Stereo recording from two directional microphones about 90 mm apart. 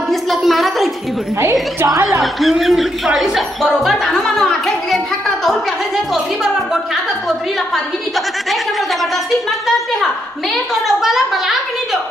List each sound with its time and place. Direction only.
0.1 s a sound: centre (ahead or behind)
1.4 s a woman's voice: 30° right (ahead or behind)
2.4 s a woman's voice: centre (ahead or behind)
10.5 s a woman's voice: 5° right (ahead or behind)